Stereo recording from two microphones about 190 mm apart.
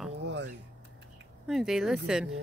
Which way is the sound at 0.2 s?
65° right (ahead or behind).